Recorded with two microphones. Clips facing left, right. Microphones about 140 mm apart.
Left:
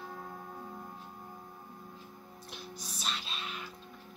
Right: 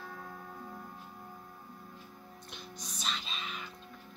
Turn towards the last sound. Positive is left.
turn(degrees=0)  # may be behind; listen again after turning